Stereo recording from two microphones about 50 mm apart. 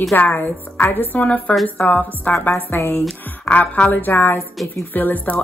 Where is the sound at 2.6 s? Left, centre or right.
Left.